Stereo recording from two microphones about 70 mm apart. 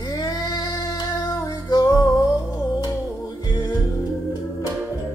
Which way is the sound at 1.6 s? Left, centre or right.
Left.